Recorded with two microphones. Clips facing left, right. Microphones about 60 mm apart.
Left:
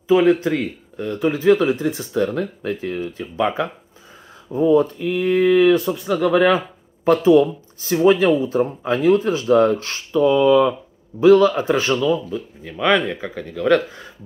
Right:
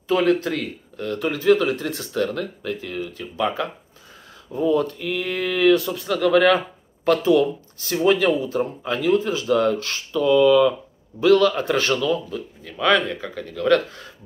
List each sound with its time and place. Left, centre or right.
0.1 s speech: centre